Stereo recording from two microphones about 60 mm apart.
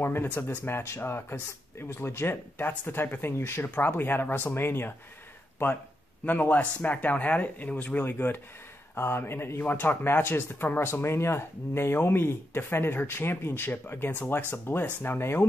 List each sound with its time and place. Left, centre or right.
0.0 s speech: left
6.2 s speech: left